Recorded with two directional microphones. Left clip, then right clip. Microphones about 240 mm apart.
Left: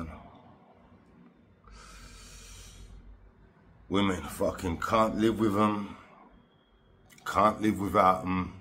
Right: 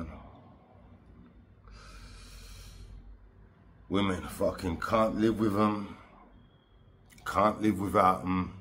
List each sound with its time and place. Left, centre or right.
1.7 s snort: centre
3.9 s speech: centre
7.1 s speech: centre